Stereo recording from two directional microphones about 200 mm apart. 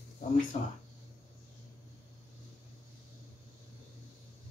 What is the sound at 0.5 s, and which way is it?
Speech, 35° left (ahead or behind).